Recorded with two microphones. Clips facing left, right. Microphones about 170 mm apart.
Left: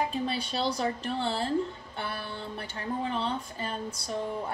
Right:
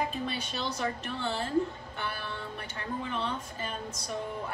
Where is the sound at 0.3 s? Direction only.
30° left (ahead or behind).